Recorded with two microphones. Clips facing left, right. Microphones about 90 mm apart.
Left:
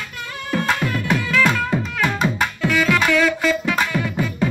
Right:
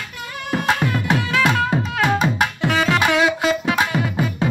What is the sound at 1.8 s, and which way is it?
Music, 40° right (ahead or behind).